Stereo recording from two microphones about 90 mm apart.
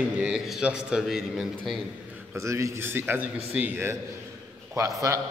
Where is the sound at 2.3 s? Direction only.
35° right (ahead or behind).